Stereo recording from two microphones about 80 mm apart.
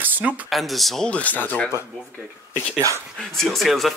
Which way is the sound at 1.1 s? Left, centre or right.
Centre.